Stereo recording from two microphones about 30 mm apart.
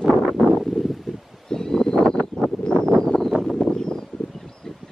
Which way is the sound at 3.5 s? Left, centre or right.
Left.